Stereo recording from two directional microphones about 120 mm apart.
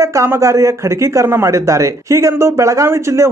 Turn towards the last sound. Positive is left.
turn(degrees=-25)  # may be behind; listen again after turning